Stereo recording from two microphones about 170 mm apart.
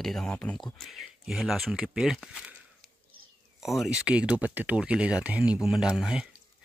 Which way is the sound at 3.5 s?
Centre (ahead or behind).